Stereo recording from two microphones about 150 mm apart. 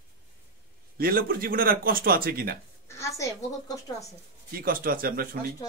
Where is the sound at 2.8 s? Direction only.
20° left (ahead or behind).